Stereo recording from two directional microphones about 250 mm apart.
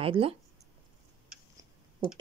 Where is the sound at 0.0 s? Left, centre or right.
Right.